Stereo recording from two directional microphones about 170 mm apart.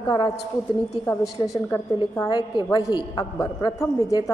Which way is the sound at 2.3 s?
25° left (ahead or behind).